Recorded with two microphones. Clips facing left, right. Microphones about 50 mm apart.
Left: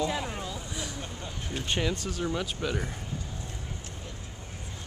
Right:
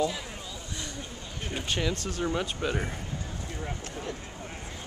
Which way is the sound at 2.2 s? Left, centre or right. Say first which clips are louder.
Right 2 dB; centre.